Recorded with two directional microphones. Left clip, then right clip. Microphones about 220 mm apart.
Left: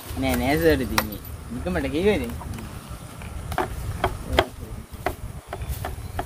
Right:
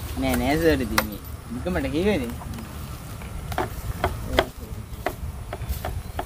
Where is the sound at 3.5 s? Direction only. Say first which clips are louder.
Left 1 dB; 10° left (ahead or behind).